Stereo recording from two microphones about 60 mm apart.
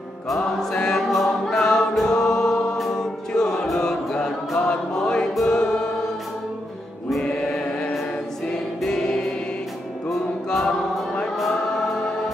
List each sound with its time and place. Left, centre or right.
0.3 s music: centre
1.1 s choir: centre
5.3 s music: centre
7.2 s choir: centre
10.0 s music: centre